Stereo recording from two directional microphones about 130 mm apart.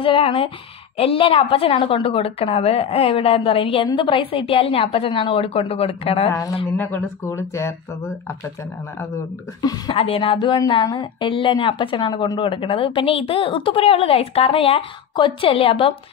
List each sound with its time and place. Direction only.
0.0 s a woman's voice: 45° left (ahead or behind)
6.8 s speech: 15° left (ahead or behind)
9.6 s speech: 30° left (ahead or behind)
9.9 s a woman's voice: 45° left (ahead or behind)